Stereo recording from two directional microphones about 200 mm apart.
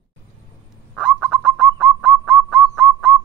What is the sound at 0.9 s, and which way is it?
Bird, 5° right (ahead or behind).